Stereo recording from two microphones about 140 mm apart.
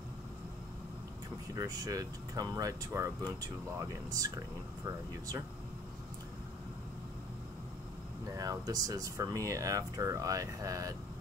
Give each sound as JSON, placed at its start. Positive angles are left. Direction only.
{"t": 1.5, "sound": "speech", "side_deg": -25}
{"t": 8.4, "sound": "speech", "side_deg": -25}